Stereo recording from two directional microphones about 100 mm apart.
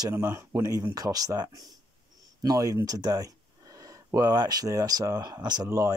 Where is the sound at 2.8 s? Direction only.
40° right (ahead or behind).